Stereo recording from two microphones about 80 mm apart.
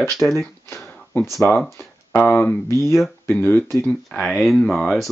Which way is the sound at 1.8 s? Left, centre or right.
Left.